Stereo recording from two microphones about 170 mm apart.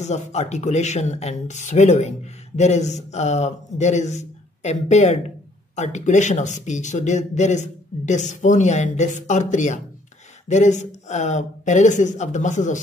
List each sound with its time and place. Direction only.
0.0 s speech: 40° left (ahead or behind)